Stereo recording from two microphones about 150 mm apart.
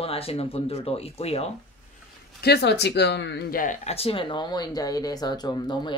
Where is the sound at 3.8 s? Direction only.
40° left (ahead or behind).